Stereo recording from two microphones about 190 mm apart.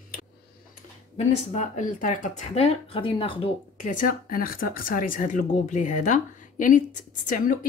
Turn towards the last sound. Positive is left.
turn(degrees=45)  # may be behind; listen again after turning